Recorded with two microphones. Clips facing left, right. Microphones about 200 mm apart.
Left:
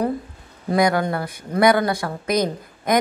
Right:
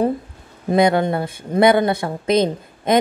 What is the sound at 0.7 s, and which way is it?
Speech, 25° right (ahead or behind).